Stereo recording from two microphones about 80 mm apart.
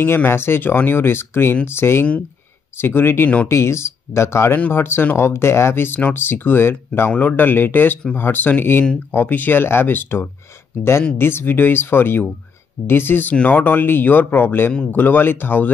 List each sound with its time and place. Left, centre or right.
0.0 s speech: left